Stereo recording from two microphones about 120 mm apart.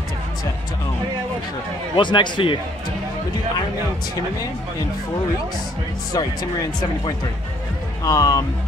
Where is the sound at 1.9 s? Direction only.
40° left (ahead or behind).